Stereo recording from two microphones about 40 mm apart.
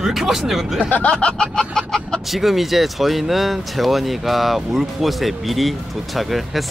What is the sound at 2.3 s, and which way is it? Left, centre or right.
Speech, centre.